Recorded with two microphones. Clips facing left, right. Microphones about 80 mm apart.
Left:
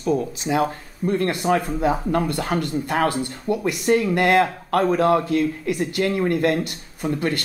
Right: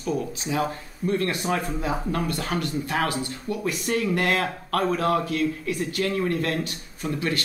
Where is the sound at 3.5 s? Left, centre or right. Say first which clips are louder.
Left 7 dB; left.